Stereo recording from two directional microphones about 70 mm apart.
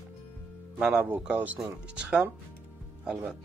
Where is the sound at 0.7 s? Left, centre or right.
Centre.